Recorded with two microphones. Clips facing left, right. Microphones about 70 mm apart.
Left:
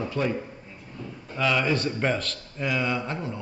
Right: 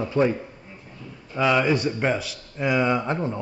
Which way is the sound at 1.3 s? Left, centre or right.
Right.